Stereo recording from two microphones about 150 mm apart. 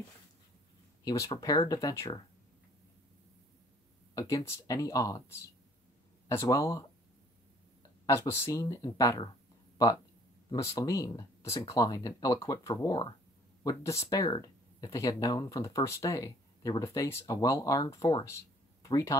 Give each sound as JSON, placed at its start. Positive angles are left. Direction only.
{"t": 1.0, "sound": "speech", "side_deg": 25}
{"t": 4.1, "sound": "speech", "side_deg": 20}
{"t": 8.1, "sound": "speech", "side_deg": 15}
{"t": 10.5, "sound": "speech", "side_deg": 20}